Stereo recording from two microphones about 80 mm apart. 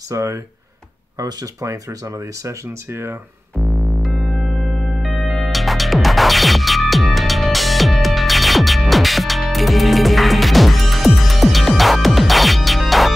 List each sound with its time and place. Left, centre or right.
0.1 s speech: right
3.5 s synthesizer: centre
5.0 s music: centre